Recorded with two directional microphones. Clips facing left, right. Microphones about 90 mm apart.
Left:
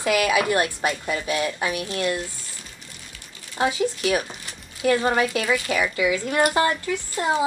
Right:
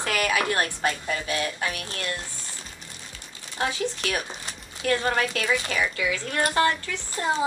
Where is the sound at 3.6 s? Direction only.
15° left (ahead or behind).